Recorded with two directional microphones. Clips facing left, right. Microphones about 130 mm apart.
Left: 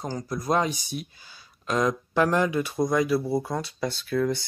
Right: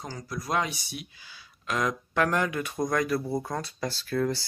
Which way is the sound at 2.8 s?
5° left (ahead or behind).